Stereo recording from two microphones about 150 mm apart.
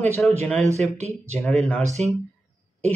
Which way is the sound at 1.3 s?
5° left (ahead or behind).